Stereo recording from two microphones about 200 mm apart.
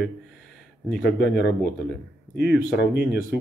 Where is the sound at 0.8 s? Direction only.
5° left (ahead or behind).